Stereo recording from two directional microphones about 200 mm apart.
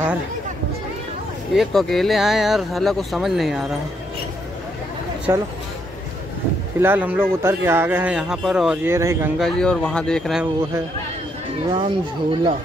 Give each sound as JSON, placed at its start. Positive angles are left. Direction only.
{"t": 1.5, "sound": "speech", "side_deg": 0}
{"t": 5.3, "sound": "speech", "side_deg": -10}
{"t": 6.8, "sound": "speech", "side_deg": -10}
{"t": 9.4, "sound": "speech", "side_deg": 5}
{"t": 11.7, "sound": "speech", "side_deg": -25}